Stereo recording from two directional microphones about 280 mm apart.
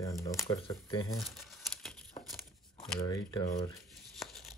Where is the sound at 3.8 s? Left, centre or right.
Centre.